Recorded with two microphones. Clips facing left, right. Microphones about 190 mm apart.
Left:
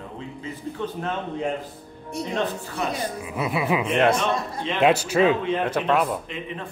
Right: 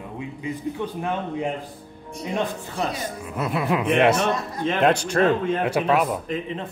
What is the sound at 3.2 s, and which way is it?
A man's voice, centre (ahead or behind).